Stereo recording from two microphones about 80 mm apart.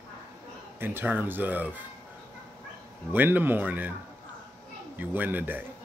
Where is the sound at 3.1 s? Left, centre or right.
Right.